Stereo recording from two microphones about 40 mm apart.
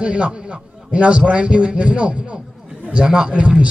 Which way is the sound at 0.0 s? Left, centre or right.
Right.